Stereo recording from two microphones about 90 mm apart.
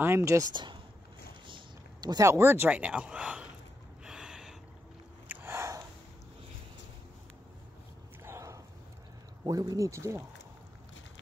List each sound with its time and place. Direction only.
0.0 s speech: 30° right (ahead or behind)
0.5 s speech: 60° right (ahead or behind)
2.0 s a sound: 50° right (ahead or behind)
2.2 s speech: 30° right (ahead or behind); by 3.4 s 10° right (ahead or behind)
4.0 s gasp: 5° right (ahead or behind)
5.3 s sniff: 30° right (ahead or behind)
8.2 s a sound: 30° right (ahead or behind)
9.4 s speech: 40° right (ahead or behind)